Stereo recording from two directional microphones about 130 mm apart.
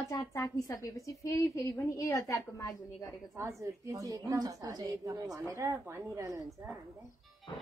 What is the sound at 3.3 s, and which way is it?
A woman's voice, 25° right (ahead or behind).